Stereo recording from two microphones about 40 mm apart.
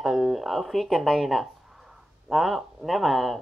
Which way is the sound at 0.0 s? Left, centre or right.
Centre.